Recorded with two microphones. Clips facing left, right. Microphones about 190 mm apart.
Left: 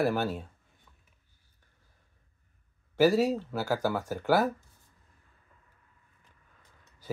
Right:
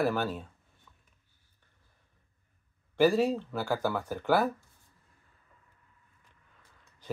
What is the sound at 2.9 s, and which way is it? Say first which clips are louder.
Speech: left 1 dB; 10° left (ahead or behind).